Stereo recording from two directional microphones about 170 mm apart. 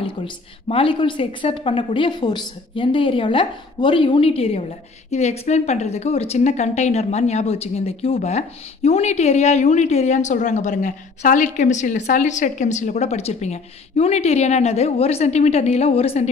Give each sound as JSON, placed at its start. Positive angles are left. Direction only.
{"t": 0.0, "sound": "a woman's voice", "side_deg": 35}